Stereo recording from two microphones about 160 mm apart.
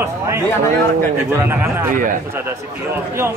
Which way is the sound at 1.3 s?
15° right (ahead or behind).